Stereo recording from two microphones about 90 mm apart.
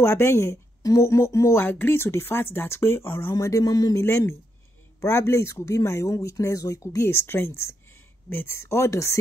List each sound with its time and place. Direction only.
0.0 s speech: 30° left (ahead or behind); by 4.0 s 45° left (ahead or behind)
5.0 s speech: 30° left (ahead or behind)